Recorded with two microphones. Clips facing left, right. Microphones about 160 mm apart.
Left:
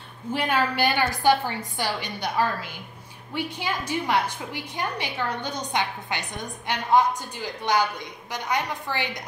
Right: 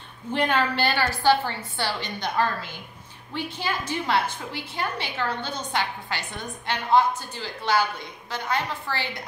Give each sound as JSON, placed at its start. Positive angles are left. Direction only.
{"t": 0.3, "sound": "a woman's voice", "side_deg": 10}